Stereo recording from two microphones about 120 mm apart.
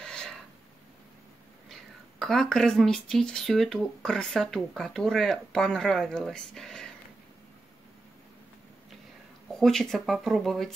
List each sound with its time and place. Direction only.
0.0 s a sound: 5° left (ahead or behind)
1.7 s speech: centre (ahead or behind)
9.5 s speech: 5° left (ahead or behind)